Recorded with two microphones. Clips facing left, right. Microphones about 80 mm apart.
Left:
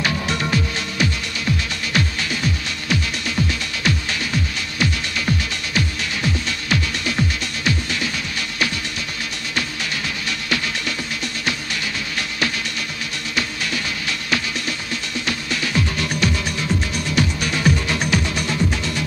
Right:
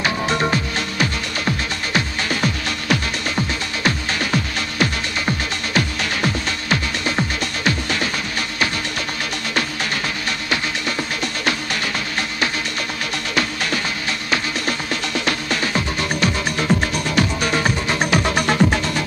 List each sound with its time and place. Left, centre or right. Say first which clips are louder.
0.0 s music: right 3 dB; right
2.2 s music: right 3 dB; right
3.3 s music: right 1 dB; right
4.2 s music: right 3 dB; right
6.7 s music: right 1 dB; right
13.3 s music: right 3 dB; right
15.5 s music: right 1 dB; right
16.5 s music: right 4 dB; right
18.1 s music: right 4 dB; right